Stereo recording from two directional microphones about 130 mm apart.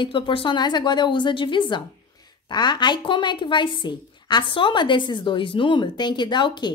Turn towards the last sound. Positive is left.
turn(degrees=35)  # may be behind; listen again after turning